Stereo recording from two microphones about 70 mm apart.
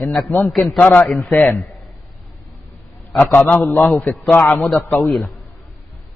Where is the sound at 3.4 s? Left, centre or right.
Left.